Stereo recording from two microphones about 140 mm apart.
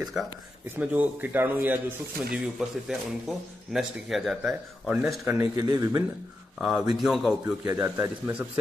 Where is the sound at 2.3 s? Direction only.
Centre (ahead or behind).